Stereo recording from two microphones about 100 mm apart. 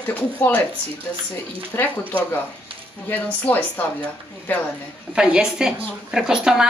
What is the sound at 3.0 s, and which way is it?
A woman's voice, 20° left (ahead or behind).